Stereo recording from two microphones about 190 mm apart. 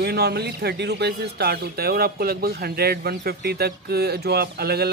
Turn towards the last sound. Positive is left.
turn(degrees=-55)  # may be behind; listen again after turning